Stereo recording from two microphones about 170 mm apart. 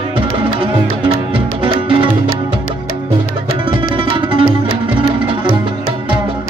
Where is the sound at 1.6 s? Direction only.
30° right (ahead or behind).